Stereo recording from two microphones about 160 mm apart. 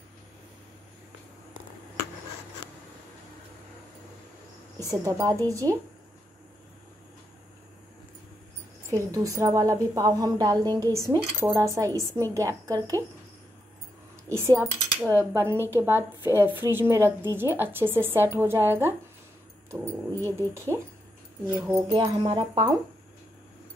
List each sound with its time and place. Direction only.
5.2 s a woman's voice: 25° right (ahead or behind)
9.1 s a woman's voice: 20° right (ahead or behind)
14.3 s speech: 15° right (ahead or behind)
21.9 s a woman's voice: 30° right (ahead or behind)